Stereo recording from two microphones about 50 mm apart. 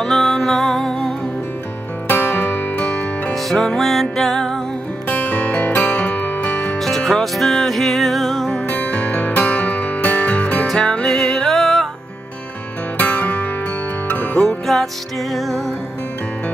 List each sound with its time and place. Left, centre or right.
0.0 s music: centre
2.0 s music: left
3.3 s music: centre
5.0 s music: left
6.8 s music: centre
8.6 s music: left
10.8 s music: centre
11.1 s music: centre
12.9 s music: left
14.7 s music: centre